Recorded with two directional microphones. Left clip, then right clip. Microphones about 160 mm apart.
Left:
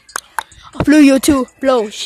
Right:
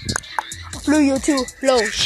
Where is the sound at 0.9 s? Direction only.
55° left (ahead or behind).